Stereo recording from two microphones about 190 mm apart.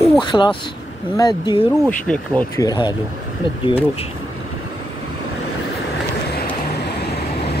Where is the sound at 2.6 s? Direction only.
20° left (ahead or behind).